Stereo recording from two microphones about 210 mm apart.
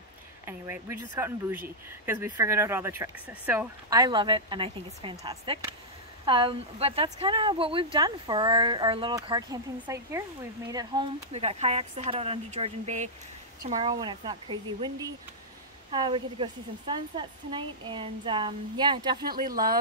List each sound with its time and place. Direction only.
0.5 s a sound: 10° right (ahead or behind)
1.2 s speech: 10° right (ahead or behind)
11.3 s speech: 30° right (ahead or behind)
13.7 s speech: 20° right (ahead or behind)
19.2 s speech: 45° right (ahead or behind)